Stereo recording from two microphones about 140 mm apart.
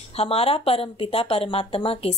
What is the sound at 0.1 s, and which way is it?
A woman's voice, 45° left (ahead or behind).